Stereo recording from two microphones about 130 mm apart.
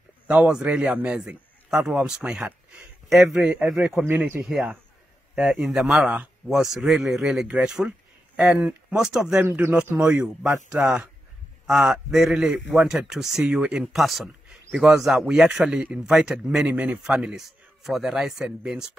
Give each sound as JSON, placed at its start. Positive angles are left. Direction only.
{"t": 0.3, "sound": "a man's voice", "side_deg": -10}
{"t": 4.0, "sound": "a man's voice", "side_deg": -15}
{"t": 4.5, "sound": "a man's voice", "side_deg": -5}
{"t": 9.4, "sound": "a man's voice", "side_deg": -20}
{"t": 9.8, "sound": "a man's voice", "side_deg": -10}